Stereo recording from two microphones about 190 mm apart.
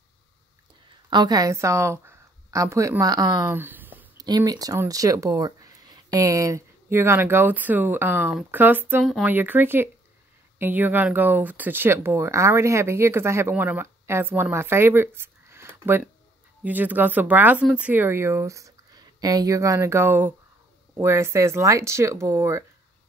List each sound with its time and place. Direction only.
1.1 s a woman's voice: 20° right (ahead or behind)